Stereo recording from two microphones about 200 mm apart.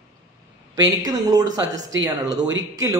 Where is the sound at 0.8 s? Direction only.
20° right (ahead or behind).